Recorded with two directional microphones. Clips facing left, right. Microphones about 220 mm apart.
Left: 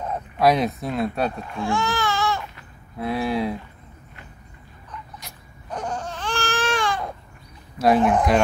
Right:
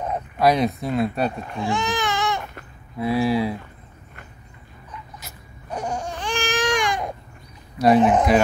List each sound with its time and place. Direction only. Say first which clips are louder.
0.4 s speech: even; centre (ahead or behind)
1.6 s baby cry: even; 20° right (ahead or behind)
3.0 s speech: right 3 dB; centre (ahead or behind)
5.2 s crying: right 1 dB; 10° right (ahead or behind)
8.0 s speech: right 2 dB; 20° right (ahead or behind)